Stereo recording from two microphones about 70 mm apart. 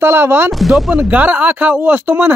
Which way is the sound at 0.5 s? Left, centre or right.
Centre.